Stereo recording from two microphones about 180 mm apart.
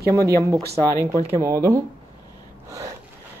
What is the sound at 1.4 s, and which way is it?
Speech, 20° right (ahead or behind).